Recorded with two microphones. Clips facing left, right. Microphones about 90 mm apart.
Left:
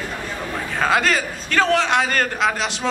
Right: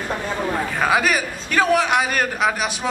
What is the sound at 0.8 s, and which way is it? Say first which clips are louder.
A man's voice: left 1 dB; 10° right (ahead or behind).